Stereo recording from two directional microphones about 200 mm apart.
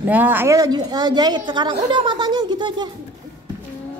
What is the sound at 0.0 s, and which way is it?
A woman's voice, 10° right (ahead or behind).